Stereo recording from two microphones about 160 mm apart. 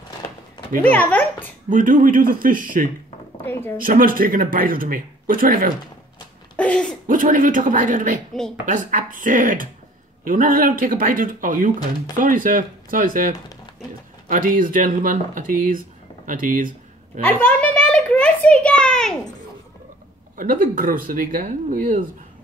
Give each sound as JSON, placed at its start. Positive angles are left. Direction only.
{"t": 0.9, "sound": "speech", "side_deg": 10}
{"t": 1.7, "sound": "speech", "side_deg": -55}
{"t": 6.5, "sound": "a sound", "side_deg": 5}
{"t": 7.1, "sound": "speech", "side_deg": -55}
{"t": 8.3, "sound": "a woman's voice", "side_deg": 5}
{"t": 8.6, "sound": "speech", "side_deg": -55}
{"t": 16.3, "sound": "a sound", "side_deg": -55}
{"t": 17.2, "sound": "a child's voice", "side_deg": 10}
{"t": 20.3, "sound": "speech", "side_deg": -55}